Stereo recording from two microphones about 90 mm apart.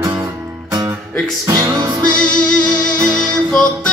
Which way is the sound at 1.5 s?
45° right (ahead or behind).